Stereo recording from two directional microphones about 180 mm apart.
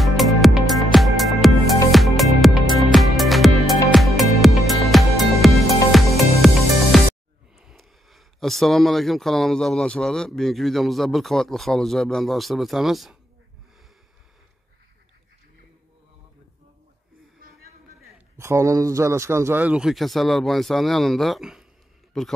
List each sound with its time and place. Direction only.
0.0 s music: centre (ahead or behind)
7.5 s speech: centre (ahead or behind)
18.4 s speech: 15° right (ahead or behind)